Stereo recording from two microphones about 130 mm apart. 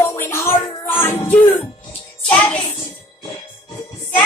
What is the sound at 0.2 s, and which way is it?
Music, 20° left (ahead or behind).